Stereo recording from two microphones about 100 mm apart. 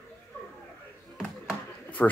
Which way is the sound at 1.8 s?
15° left (ahead or behind).